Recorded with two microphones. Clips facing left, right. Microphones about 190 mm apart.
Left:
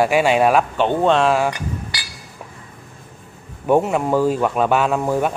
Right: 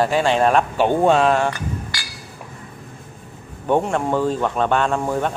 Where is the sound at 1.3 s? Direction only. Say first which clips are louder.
Left 1 dB; 10° left (ahead or behind).